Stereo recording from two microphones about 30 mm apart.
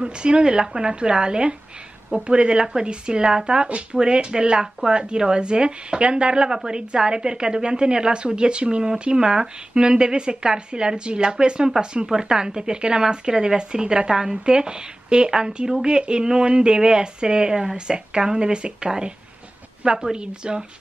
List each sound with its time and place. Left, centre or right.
0.0 s speech: right